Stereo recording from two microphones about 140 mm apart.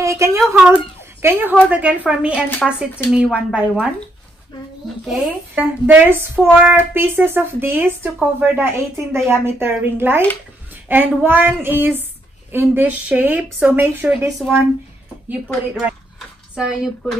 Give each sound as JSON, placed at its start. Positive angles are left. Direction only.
{"t": 0.0, "sound": "a woman's voice", "side_deg": -20}
{"t": 5.5, "sound": "a woman's voice", "side_deg": -15}
{"t": 15.7, "sound": "a sound", "side_deg": -5}